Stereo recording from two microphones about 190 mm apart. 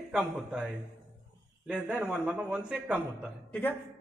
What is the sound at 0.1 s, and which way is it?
A man's voice, 5° right (ahead or behind).